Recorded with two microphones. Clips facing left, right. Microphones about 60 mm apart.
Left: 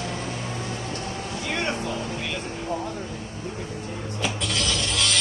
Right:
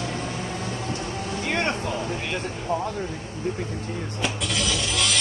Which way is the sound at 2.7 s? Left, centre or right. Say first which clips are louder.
Right 5 dB; right.